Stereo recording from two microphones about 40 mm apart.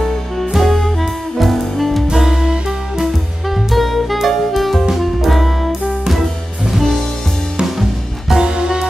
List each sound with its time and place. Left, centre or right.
0.5 s music: centre
2.1 s music: centre
3.0 s music: centre
8.4 s music: centre